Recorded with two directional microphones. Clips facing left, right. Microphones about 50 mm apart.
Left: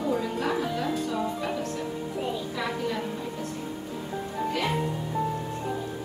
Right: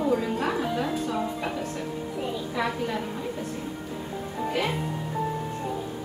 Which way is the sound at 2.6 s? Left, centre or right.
Centre.